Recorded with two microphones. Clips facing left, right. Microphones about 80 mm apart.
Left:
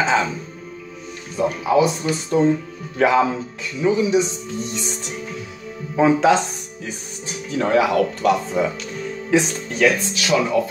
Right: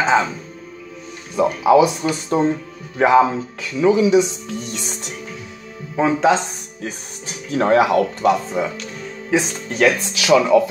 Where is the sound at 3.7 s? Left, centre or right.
Right.